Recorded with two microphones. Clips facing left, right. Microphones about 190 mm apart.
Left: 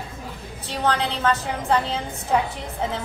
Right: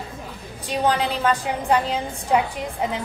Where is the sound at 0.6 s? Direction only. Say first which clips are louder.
Right 2 dB; 10° right (ahead or behind).